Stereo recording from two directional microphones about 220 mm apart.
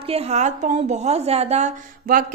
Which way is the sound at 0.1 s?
30° right (ahead or behind).